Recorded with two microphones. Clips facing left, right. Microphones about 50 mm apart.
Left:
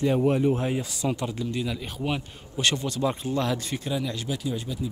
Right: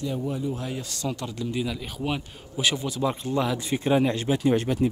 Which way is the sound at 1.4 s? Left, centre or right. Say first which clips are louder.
Right 1 dB; centre.